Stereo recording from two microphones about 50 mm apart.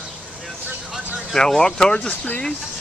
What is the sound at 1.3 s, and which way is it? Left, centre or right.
Speech, centre.